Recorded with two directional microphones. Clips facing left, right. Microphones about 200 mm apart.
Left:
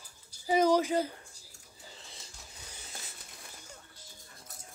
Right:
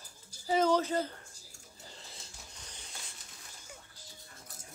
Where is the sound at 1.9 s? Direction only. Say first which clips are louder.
Even; centre (ahead or behind).